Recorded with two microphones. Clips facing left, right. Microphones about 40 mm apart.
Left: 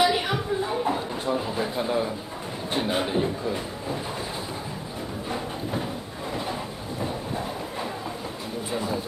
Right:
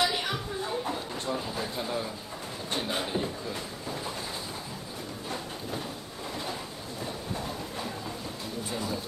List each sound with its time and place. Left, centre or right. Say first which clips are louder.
0.0 s a sound: left 6 dB; centre
2.7 s speech: left 6 dB; centre
5.3 s music: left 6 dB; left
7.3 s train: left 5 dB; centre
8.6 s music: left 6 dB; centre